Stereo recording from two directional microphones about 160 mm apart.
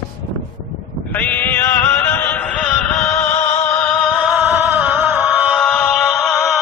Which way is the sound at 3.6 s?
15° left (ahead or behind).